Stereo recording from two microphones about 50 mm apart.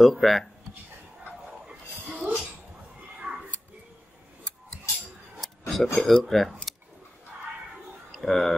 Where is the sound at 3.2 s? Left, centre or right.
Right.